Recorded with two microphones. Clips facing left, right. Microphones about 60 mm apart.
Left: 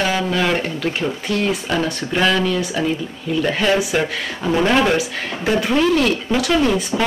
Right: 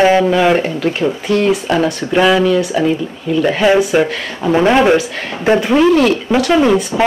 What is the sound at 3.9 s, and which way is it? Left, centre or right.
Speech, centre.